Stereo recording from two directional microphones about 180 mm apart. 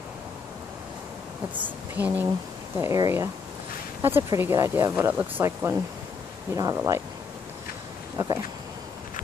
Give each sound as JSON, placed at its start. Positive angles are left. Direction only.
{"t": 1.5, "sound": "speech", "side_deg": -10}
{"t": 8.2, "sound": "speech", "side_deg": -15}